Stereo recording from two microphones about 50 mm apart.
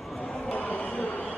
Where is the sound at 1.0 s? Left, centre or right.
Left.